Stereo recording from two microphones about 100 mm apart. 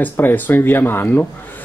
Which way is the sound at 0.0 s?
20° left (ahead or behind).